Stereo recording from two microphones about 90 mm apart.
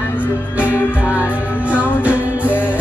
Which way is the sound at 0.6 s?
15° right (ahead or behind).